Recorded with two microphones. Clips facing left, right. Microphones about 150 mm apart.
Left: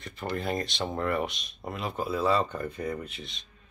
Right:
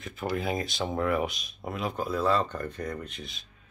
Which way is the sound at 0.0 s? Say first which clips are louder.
Right 2 dB; centre (ahead or behind).